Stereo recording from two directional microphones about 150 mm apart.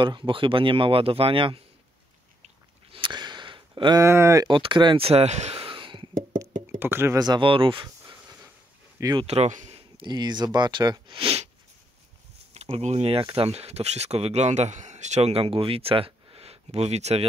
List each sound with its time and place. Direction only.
0.0 s speech: 30° right (ahead or behind)
2.4 s a sound: 35° right (ahead or behind)
4.0 s speech: 20° right (ahead or behind)
4.5 s speech: 35° right (ahead or behind)
6.8 s speech: 15° right (ahead or behind); by 7.9 s 35° right (ahead or behind)
8.0 s a sound: 20° right (ahead or behind)
9.2 s speech: 45° right (ahead or behind)
9.9 s speech: 30° right (ahead or behind)
12.5 s speech: 45° right (ahead or behind)